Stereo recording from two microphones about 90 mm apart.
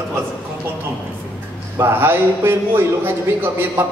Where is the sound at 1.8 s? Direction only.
25° right (ahead or behind).